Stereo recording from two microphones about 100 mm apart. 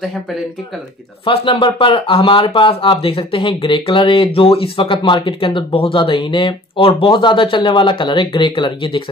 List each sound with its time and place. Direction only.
1.2 s speech: 60° left (ahead or behind)